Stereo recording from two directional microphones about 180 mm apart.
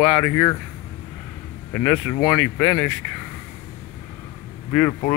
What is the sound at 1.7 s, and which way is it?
Speech, 10° left (ahead or behind).